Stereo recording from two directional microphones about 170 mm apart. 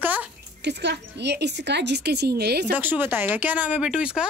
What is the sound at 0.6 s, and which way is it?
A woman's voice, 90° right.